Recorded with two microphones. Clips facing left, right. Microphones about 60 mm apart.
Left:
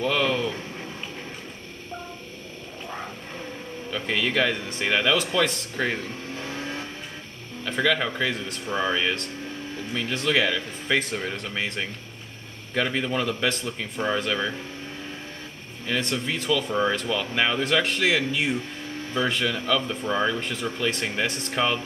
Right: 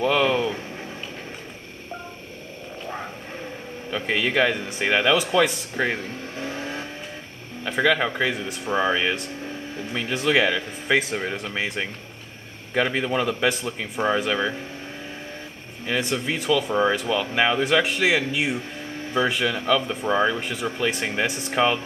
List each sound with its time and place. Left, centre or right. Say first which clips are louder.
0.0 s a sound: right 3 dB; centre
3.9 s speech: right 2 dB; centre
6.4 s vehicle: right 3 dB; right
7.6 s speech: right 3 dB; centre
15.9 s speech: right 2 dB; centre